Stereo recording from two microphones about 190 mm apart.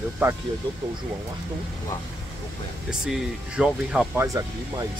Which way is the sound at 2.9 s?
5° right (ahead or behind).